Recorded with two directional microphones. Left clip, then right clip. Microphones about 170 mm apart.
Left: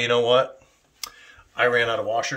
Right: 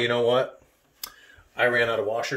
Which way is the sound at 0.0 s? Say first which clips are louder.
Left 3 dB; 10° left (ahead or behind).